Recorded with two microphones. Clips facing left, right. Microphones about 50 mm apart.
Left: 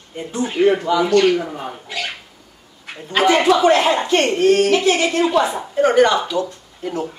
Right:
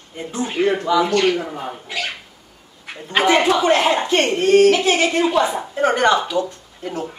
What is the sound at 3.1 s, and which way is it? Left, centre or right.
A man's voice, right.